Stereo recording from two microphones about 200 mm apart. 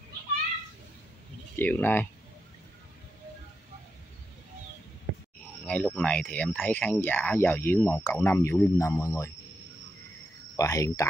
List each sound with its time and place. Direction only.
1.6 s speech: 10° left (ahead or behind)
5.4 s speech: 5° left (ahead or behind)
10.5 s speech: 15° left (ahead or behind)